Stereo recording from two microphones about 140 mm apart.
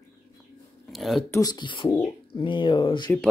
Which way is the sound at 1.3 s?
30° left (ahead or behind).